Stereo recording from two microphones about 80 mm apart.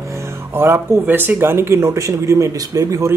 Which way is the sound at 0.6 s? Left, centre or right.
Right.